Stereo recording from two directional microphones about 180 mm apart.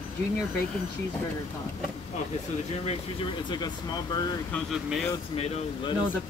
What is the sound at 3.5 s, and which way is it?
Speech, 25° left (ahead or behind).